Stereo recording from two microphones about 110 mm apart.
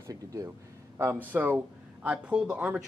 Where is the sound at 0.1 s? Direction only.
30° right (ahead or behind).